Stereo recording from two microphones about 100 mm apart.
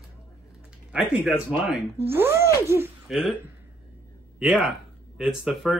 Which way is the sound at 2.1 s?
25° right (ahead or behind).